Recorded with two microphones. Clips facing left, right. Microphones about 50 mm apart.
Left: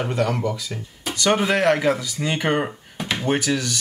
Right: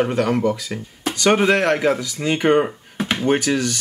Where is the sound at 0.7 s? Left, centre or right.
Right.